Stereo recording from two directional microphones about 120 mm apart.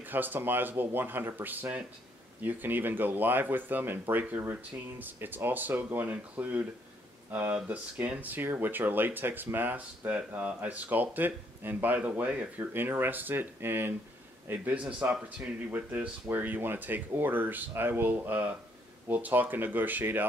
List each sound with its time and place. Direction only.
0.0 s speech: 15° right (ahead or behind)